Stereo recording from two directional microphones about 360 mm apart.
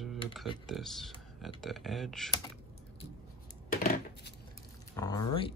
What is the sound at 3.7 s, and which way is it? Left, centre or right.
Coin, left.